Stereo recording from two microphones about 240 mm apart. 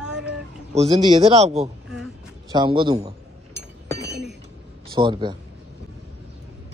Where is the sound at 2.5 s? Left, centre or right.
Centre.